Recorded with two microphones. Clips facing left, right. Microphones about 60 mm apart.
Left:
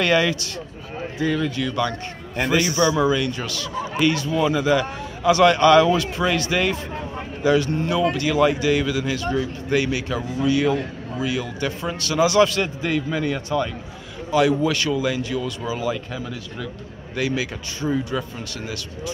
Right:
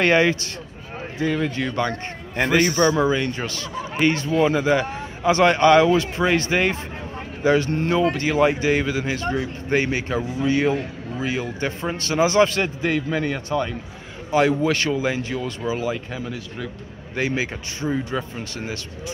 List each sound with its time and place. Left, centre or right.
0.0 s a man's voice: right